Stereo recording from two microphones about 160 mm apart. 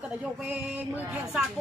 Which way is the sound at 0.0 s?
5° right (ahead or behind).